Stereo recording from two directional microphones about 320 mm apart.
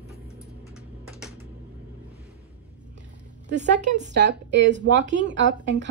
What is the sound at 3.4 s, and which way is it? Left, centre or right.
A woman's voice, right.